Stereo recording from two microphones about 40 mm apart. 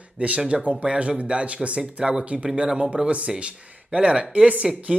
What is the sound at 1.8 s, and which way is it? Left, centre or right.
Speech, centre.